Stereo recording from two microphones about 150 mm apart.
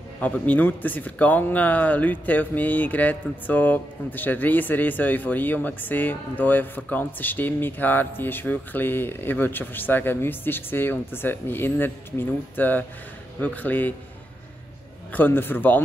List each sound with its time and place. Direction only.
0.2 s speech: 10° left (ahead or behind)
15.1 s speech: 15° left (ahead or behind)